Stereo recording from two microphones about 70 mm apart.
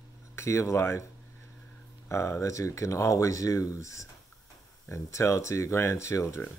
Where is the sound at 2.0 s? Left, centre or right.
Left.